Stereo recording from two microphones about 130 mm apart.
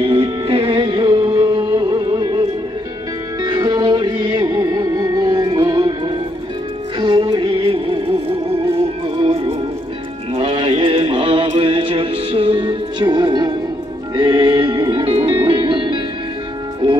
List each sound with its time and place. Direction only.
0.0 s music: 45° right (ahead or behind)
3.4 s music: 30° right (ahead or behind); by 9.6 s 45° right (ahead or behind)
10.3 s a sound: 45° right (ahead or behind)
14.1 s music: 40° right (ahead or behind)